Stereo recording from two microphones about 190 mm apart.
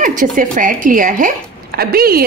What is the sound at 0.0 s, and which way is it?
A woman's voice, 45° right (ahead or behind).